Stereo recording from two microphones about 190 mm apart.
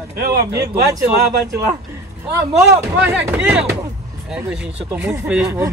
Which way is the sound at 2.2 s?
15° right (ahead or behind).